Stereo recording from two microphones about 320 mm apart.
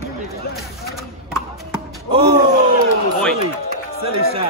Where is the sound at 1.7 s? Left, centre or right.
Centre.